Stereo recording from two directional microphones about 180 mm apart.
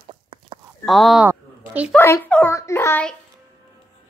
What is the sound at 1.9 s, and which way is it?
A child's voice, 10° left (ahead or behind).